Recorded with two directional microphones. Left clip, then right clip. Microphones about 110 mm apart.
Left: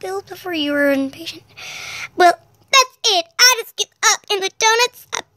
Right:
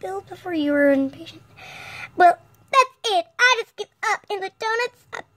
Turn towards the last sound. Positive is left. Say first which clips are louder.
# left 8 dB
turn(degrees=10)  # may be behind; listen again after turning